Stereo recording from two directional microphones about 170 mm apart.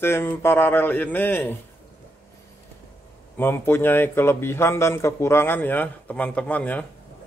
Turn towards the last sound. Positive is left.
turn(degrees=10)  # may be behind; listen again after turning